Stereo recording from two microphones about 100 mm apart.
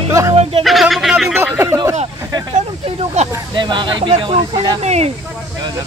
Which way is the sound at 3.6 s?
50° right (ahead or behind).